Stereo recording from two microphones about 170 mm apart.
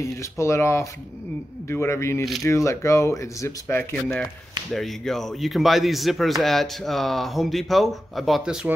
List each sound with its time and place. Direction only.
0.0 s a man's voice: 15° left (ahead or behind); by 8.7 s centre (ahead or behind)